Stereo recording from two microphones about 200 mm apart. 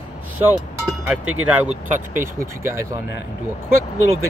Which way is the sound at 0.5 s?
10° right (ahead or behind).